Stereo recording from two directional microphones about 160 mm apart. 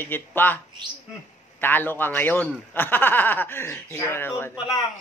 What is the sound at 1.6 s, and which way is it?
Speech, 15° left (ahead or behind).